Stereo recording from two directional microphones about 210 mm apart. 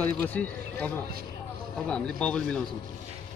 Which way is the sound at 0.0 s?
10° left (ahead or behind).